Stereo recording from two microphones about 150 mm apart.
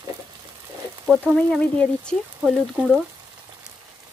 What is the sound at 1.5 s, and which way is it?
Speech, 5° left (ahead or behind).